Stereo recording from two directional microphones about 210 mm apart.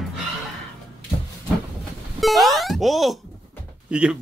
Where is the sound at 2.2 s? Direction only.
Centre (ahead or behind).